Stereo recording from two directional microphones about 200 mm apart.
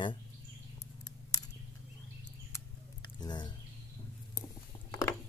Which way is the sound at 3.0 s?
20° left (ahead or behind).